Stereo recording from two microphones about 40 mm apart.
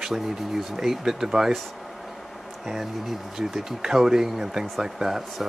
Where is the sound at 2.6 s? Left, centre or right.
Centre.